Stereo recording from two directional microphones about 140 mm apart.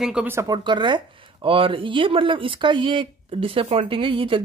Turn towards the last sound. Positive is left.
turn(degrees=-40)  # may be behind; listen again after turning